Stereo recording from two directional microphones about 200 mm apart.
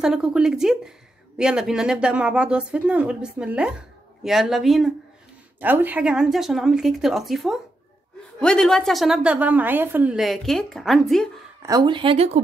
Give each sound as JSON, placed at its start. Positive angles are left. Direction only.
{"t": 0.0, "sound": "a woman's voice", "side_deg": -5}
{"t": 11.6, "sound": "speech", "side_deg": -20}